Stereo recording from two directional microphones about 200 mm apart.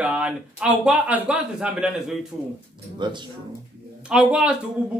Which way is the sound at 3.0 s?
20° right (ahead or behind).